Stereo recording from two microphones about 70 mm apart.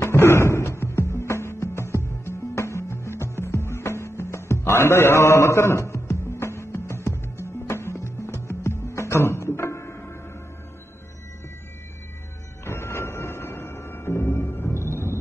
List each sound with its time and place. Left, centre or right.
0.0 s music: left
12.6 s music: left